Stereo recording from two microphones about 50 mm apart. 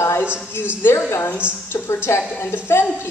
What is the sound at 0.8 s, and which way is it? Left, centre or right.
A woman's voice, left.